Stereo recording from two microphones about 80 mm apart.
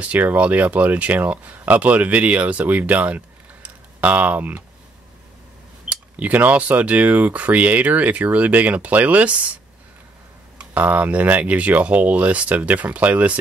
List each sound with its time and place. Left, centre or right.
0.0 s speech: centre
5.9 s speech: centre
10.6 s speech: right